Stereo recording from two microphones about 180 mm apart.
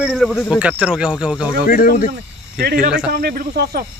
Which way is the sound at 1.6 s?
55° left (ahead or behind).